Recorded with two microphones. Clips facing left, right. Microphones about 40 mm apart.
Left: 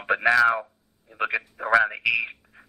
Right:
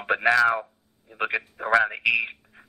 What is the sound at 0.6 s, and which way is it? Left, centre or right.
A man's voice, centre.